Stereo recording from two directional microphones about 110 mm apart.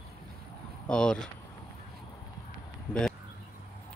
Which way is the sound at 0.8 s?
10° left (ahead or behind).